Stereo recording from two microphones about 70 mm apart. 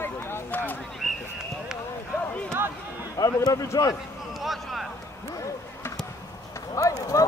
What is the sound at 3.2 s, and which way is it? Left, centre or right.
Speech, left.